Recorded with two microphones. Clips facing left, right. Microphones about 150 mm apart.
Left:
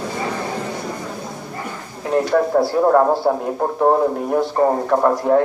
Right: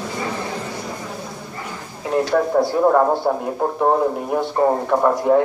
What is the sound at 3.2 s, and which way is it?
Speech, centre (ahead or behind).